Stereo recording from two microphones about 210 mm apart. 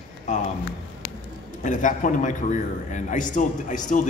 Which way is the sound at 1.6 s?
35° left (ahead or behind).